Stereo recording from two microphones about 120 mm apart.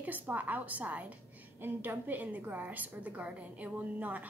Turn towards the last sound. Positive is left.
turn(degrees=-15)  # may be behind; listen again after turning